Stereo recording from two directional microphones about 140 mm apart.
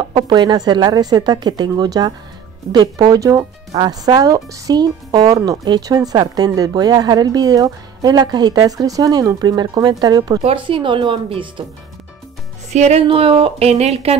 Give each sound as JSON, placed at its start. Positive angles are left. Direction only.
{"t": 0.0, "sound": "speech", "side_deg": -35}
{"t": 10.4, "sound": "speech", "side_deg": -40}
{"t": 12.7, "sound": "speech", "side_deg": -50}